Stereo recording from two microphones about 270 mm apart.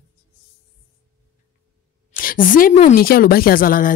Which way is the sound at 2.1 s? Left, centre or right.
Left.